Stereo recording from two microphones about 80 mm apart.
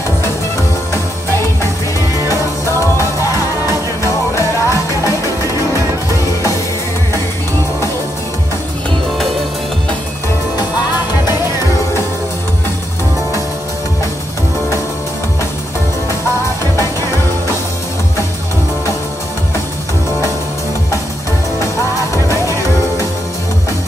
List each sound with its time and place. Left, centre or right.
0.9 s music: left
3.0 s music: left
22.1 s music: left